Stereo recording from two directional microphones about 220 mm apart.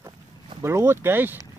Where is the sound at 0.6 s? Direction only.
10° right (ahead or behind).